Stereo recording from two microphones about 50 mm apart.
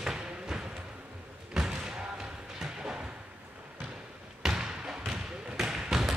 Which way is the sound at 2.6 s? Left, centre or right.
Centre.